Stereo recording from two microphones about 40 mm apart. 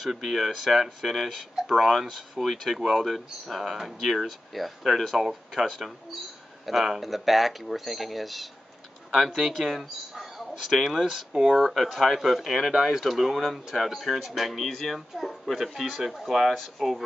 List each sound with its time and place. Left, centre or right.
0.0 s speech: centre
5.1 s speech: centre
5.5 s speech: centre
14.6 s speech: centre